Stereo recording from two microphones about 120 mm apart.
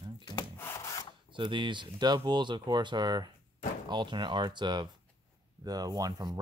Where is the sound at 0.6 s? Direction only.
25° left (ahead or behind).